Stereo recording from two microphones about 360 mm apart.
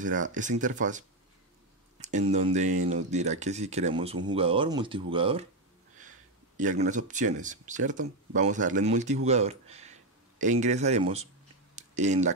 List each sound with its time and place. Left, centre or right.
0.3 s speech: right
6.5 s speech: right
11.7 s a sound: centre